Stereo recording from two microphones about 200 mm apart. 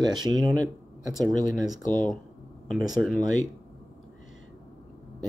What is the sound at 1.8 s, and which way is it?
Speech, 40° left (ahead or behind).